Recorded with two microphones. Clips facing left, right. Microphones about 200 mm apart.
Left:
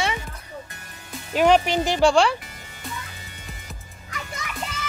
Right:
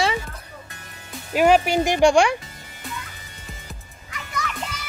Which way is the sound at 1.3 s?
5° right (ahead or behind).